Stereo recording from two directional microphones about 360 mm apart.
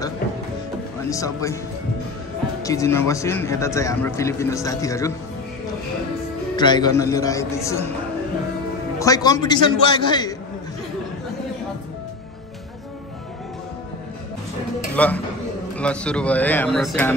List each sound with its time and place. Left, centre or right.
1.1 s a man's voice: centre
2.6 s a man's voice: centre
6.5 s a man's voice: centre
9.0 s a man's voice: centre
15.0 s a man's voice: centre